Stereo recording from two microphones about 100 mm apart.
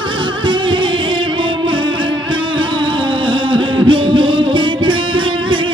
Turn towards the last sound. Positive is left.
turn(degrees=-55)  # may be behind; listen again after turning